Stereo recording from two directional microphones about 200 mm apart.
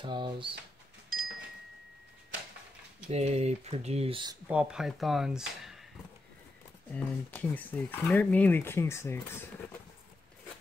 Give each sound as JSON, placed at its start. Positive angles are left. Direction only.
{"t": 0.0, "sound": "speech", "side_deg": -25}
{"t": 3.1, "sound": "speech", "side_deg": -30}
{"t": 4.5, "sound": "speech", "side_deg": -5}
{"t": 6.9, "sound": "speech", "side_deg": 5}